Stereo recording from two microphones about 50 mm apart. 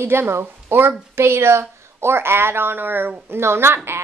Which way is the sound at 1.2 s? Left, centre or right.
Right.